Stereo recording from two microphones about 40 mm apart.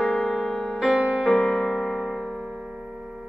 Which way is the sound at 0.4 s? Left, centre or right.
Centre.